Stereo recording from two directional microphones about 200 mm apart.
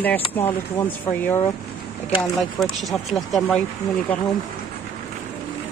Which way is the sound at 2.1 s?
25° left (ahead or behind).